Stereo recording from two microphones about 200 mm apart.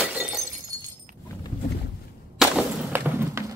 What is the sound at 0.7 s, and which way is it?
Breaking, 20° right (ahead or behind).